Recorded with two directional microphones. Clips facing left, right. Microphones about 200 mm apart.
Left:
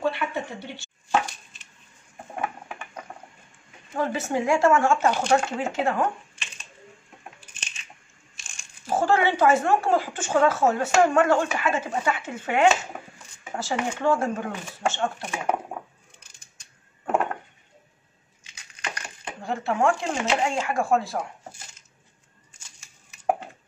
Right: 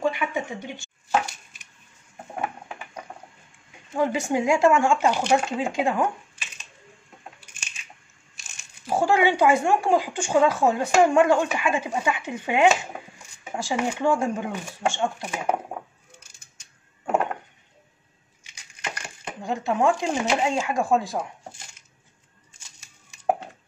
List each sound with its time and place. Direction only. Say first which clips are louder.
0.0 s speech: right 1 dB; 15° right (ahead or behind)
3.9 s speech: right 3 dB; 15° right (ahead or behind)
8.8 s speech: right 1 dB; 10° right (ahead or behind)
19.2 s speech: right 1 dB; 15° right (ahead or behind)